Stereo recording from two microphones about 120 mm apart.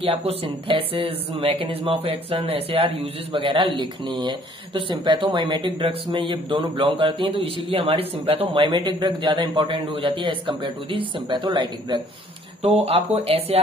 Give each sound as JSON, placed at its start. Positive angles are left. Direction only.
{"t": 0.0, "sound": "speech", "side_deg": -55}
{"t": 9.8, "sound": "speech", "side_deg": -55}
{"t": 12.6, "sound": "speech", "side_deg": -55}